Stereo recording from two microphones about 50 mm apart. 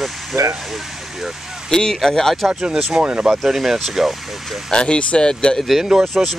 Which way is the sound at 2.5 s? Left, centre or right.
Centre.